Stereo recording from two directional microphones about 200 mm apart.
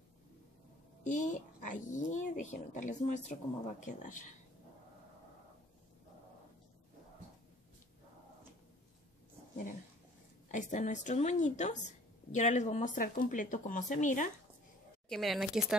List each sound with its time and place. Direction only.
1.0 s speech: 40° left (ahead or behind)
10.5 s speech: 40° left (ahead or behind)
15.0 s speech: centre (ahead or behind)